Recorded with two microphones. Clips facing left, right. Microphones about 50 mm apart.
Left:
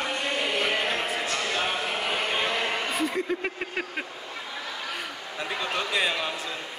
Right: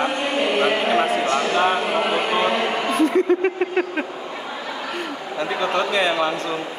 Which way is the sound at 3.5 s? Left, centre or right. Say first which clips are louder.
Right 10 dB; centre.